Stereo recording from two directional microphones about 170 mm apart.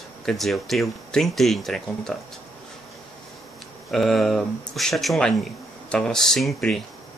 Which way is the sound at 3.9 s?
Centre (ahead or behind).